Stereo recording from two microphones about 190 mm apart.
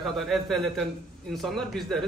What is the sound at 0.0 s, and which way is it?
A man's voice, centre (ahead or behind).